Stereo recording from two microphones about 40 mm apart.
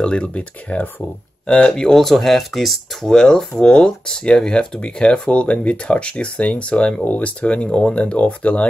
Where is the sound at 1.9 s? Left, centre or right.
Centre.